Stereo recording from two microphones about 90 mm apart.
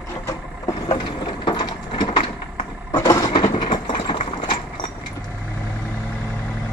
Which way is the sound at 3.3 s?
60° left (ahead or behind).